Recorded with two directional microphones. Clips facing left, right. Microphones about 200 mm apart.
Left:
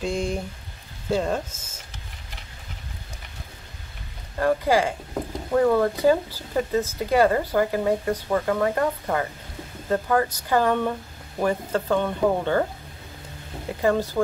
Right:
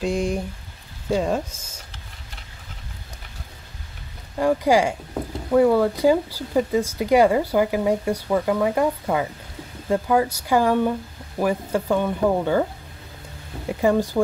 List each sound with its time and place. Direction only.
0.0 s speech: 10° right (ahead or behind)
1.5 s a sound: 5° left (ahead or behind)
4.4 s speech: 15° right (ahead or behind)
13.7 s speech: 15° right (ahead or behind)